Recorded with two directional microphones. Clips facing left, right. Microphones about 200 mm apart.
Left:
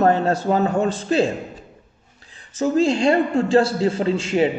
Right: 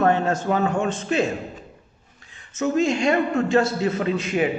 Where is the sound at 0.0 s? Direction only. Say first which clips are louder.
Left 2 dB; 35° left (ahead or behind).